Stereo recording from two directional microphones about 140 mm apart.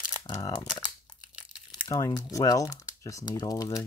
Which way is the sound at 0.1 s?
25° left (ahead or behind).